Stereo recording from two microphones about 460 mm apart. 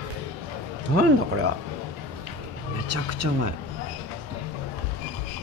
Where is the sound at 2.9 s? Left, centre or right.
Right.